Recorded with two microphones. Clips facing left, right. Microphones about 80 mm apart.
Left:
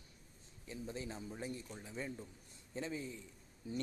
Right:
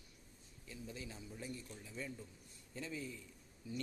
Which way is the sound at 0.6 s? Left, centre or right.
Left.